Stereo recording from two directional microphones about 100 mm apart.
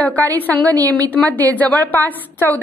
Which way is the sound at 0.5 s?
40° right (ahead or behind).